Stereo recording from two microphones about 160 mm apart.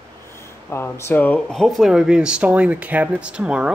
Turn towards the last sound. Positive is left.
turn(degrees=-5)  # may be behind; listen again after turning